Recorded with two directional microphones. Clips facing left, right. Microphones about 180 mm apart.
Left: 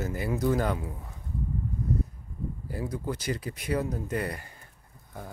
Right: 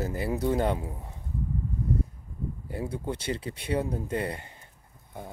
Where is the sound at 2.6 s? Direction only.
25° right (ahead or behind).